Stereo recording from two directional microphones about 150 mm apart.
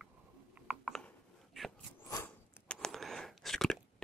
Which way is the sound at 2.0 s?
20° left (ahead or behind).